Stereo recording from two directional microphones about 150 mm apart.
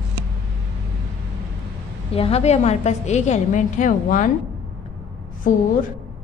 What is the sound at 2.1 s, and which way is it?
A woman's voice, 40° left (ahead or behind).